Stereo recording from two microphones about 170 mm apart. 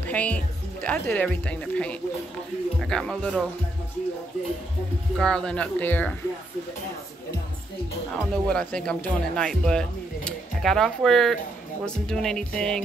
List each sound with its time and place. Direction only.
0.0 s speech: 10° left (ahead or behind)
5.1 s speech: 5° left (ahead or behind)
8.2 s speech: 5° left (ahead or behind)